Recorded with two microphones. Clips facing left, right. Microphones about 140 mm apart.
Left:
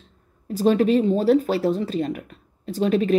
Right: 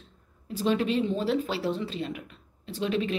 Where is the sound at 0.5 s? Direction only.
45° left (ahead or behind).